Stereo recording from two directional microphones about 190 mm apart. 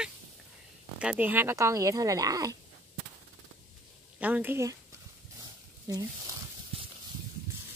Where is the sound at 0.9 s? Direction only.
5° right (ahead or behind).